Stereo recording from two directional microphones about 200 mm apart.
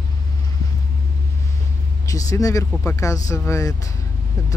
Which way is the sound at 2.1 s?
15° left (ahead or behind).